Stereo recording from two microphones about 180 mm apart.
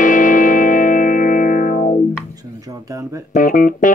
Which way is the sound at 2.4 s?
20° right (ahead or behind).